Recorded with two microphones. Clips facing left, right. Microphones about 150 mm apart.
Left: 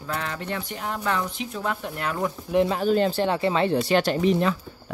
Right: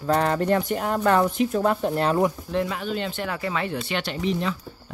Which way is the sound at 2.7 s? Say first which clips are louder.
Left 7 dB; 40° left (ahead or behind).